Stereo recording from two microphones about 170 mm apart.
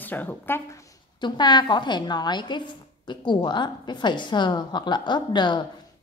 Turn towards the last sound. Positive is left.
turn(degrees=25)  # may be behind; listen again after turning